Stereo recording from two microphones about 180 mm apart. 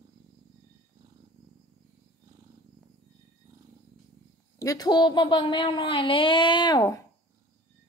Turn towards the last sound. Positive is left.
turn(degrees=20)  # may be behind; listen again after turning